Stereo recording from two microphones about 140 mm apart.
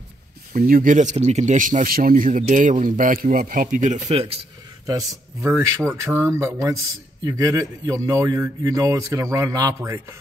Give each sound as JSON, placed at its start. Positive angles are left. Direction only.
{"t": 0.5, "sound": "a man's voice", "side_deg": -90}
{"t": 4.8, "sound": "a man's voice", "side_deg": -20}